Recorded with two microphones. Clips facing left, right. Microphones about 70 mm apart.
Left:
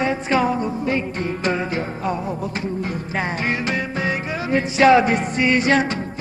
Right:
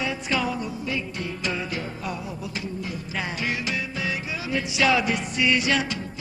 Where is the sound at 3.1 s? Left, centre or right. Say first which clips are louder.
Left 5 dB; left.